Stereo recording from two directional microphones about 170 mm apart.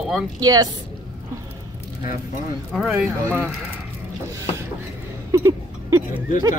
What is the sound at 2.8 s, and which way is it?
Speech, 5° right (ahead or behind).